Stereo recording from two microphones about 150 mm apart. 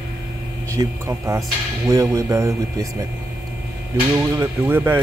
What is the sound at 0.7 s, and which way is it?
Speech, 20° right (ahead or behind).